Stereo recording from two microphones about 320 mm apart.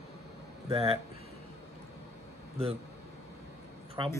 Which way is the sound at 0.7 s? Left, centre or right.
Centre.